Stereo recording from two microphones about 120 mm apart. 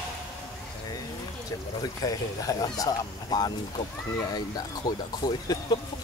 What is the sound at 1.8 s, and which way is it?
Speech, 30° left (ahead or behind).